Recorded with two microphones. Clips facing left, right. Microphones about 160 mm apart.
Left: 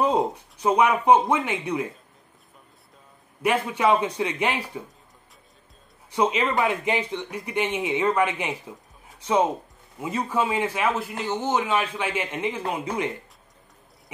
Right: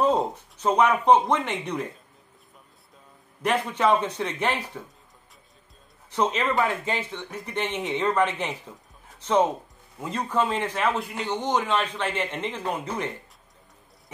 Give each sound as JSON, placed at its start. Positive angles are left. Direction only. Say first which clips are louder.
{"t": 0.0, "sound": "a man's voice", "louder": "even", "side_deg": 10}
{"t": 3.4, "sound": "a man's voice", "louder": "left 1 dB", "side_deg": 10}
{"t": 6.1, "sound": "a man's voice", "louder": "left 1 dB", "side_deg": 10}